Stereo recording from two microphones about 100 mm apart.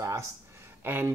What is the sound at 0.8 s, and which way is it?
Speech, 25° right (ahead or behind).